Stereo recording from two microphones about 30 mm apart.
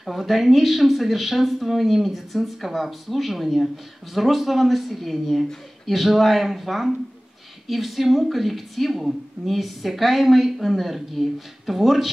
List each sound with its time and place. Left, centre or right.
0.0 s speech: centre